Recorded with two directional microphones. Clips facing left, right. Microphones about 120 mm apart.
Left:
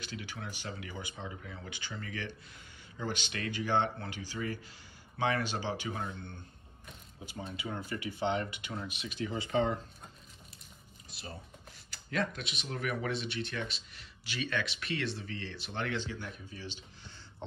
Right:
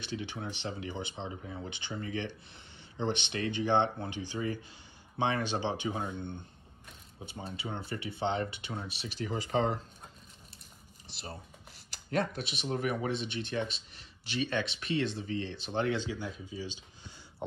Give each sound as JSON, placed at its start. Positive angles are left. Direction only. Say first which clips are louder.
{"t": 0.1, "sound": "speech", "louder": "right 7 dB", "side_deg": -25}
{"t": 7.3, "sound": "speech", "louder": "even", "side_deg": -30}
{"t": 12.1, "sound": "speech", "louder": "right 3 dB", "side_deg": -40}
{"t": 12.7, "sound": "speech", "louder": "right 3 dB", "side_deg": -25}